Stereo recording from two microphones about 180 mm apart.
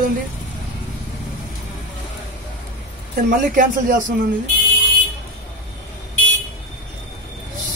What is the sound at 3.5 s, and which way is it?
Speech, 50° right (ahead or behind).